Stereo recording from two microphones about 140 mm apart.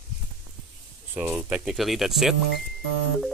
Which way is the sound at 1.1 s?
10° right (ahead or behind).